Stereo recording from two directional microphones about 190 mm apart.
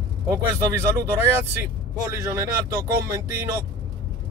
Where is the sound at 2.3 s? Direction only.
15° right (ahead or behind).